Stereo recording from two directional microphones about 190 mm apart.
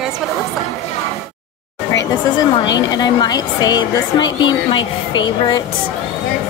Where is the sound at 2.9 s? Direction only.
20° left (ahead or behind).